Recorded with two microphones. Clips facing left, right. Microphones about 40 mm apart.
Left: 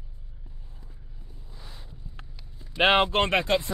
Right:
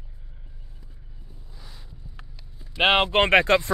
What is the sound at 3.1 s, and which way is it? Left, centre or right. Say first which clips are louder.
Speech: right 6 dB; right.